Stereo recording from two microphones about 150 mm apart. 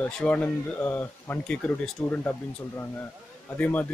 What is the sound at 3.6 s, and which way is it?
Speech, 10° left (ahead or behind).